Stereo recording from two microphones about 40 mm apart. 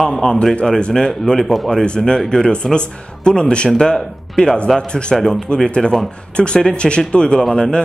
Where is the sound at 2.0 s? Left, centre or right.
Centre.